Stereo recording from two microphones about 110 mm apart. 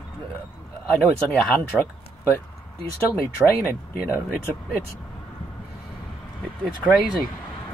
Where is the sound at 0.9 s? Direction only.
5° left (ahead or behind).